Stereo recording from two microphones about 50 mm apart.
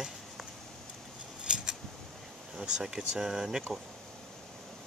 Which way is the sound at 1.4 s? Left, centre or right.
Centre.